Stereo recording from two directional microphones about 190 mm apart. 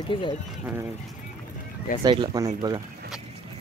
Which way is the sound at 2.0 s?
25° right (ahead or behind).